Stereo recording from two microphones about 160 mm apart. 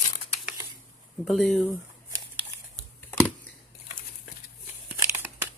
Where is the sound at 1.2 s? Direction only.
Centre (ahead or behind).